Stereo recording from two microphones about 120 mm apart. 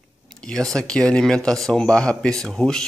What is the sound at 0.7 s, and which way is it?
Speech, 5° left (ahead or behind).